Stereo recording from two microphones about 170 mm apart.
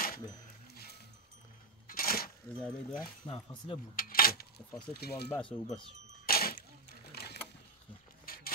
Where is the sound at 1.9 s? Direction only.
60° left (ahead or behind).